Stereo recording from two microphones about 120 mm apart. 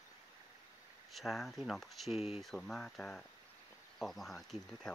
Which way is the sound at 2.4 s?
5° left (ahead or behind).